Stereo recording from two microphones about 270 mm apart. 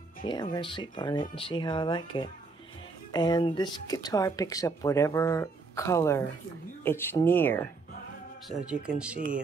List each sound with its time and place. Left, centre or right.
0.2 s speech: centre
8.8 s speech: centre